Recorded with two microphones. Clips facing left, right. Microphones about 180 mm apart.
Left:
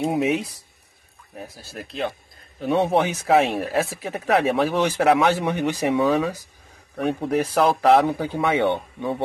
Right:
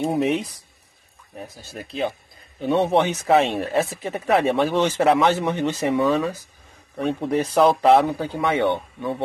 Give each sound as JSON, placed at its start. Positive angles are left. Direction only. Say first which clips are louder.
{"t": 0.0, "sound": "speech", "louder": "even", "side_deg": 0}
{"t": 1.5, "sound": "speech", "louder": "right 2 dB", "side_deg": 5}
{"t": 7.0, "sound": "speech", "louder": "even", "side_deg": 5}
{"t": 8.1, "sound": "speech", "louder": "left 1 dB", "side_deg": 15}